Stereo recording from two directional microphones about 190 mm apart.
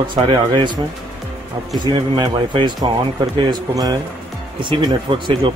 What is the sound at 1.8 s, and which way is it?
Speech, 20° right (ahead or behind).